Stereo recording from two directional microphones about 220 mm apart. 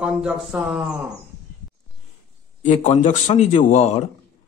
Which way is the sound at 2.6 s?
35° left (ahead or behind).